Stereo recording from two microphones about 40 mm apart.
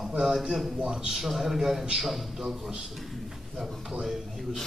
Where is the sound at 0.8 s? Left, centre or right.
Right.